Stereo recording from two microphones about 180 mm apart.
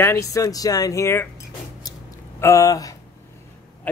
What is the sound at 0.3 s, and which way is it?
Speech, 20° left (ahead or behind).